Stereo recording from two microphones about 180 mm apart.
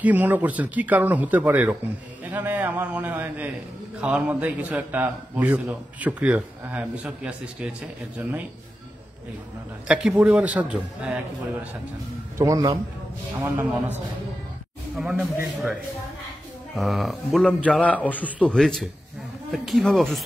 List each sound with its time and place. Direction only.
0.0 s a man's voice: 10° right (ahead or behind)
9.8 s a man's voice: 5° right (ahead or behind)
12.4 s a man's voice: 20° right (ahead or behind)
13.4 s a man's voice: 5° right (ahead or behind)
15.0 s a man's voice: 10° right (ahead or behind)
16.7 s speech: centre (ahead or behind)